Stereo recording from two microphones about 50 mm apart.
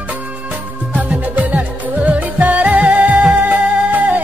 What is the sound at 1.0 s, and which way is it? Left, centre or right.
Music, right.